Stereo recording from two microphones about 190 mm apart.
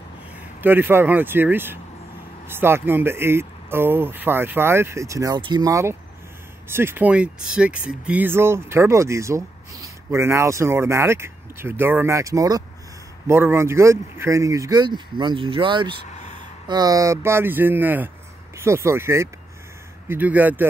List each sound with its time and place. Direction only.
0.6 s speech: 10° right (ahead or behind)